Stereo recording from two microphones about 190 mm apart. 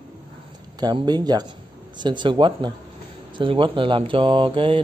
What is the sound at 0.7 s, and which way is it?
Speech, 20° right (ahead or behind).